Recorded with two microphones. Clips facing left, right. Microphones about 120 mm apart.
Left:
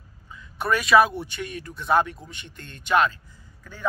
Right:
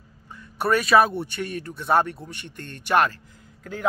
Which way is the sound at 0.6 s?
50° right (ahead or behind).